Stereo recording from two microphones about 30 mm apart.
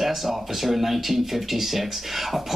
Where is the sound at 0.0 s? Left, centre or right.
Centre.